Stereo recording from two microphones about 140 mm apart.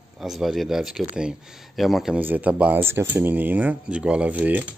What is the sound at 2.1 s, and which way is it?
Speech, 10° right (ahead or behind).